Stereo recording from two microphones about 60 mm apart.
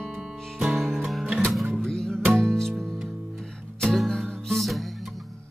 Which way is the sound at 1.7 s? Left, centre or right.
Centre.